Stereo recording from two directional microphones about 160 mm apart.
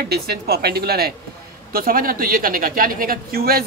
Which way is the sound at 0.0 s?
80° right.